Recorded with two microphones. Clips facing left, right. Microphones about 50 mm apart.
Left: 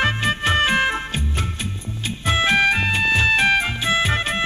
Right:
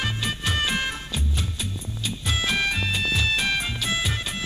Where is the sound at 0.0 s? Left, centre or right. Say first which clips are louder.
Left 8 dB; left.